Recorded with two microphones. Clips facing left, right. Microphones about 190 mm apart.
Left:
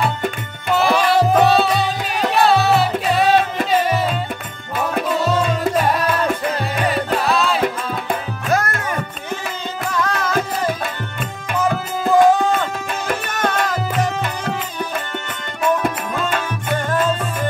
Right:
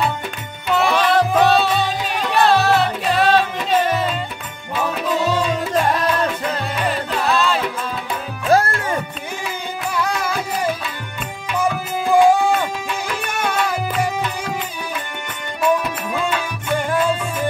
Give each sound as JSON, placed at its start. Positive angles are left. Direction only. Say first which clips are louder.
{"t": 0.0, "sound": "music", "louder": "left 2 dB", "side_deg": 50}
{"t": 0.7, "sound": "music", "louder": "left 1 dB", "side_deg": 5}
{"t": 7.2, "sound": "music", "louder": "even", "side_deg": 0}
{"t": 8.5, "sound": "music", "louder": "right 4 dB", "side_deg": -30}
{"t": 9.8, "sound": "music", "louder": "left 1 dB", "side_deg": -10}
{"t": 12.1, "sound": "music", "louder": "even", "side_deg": -10}
{"t": 15.8, "sound": "tabla", "louder": "left 1 dB", "side_deg": 50}
{"t": 16.7, "sound": "music", "louder": "right 1 dB", "side_deg": -10}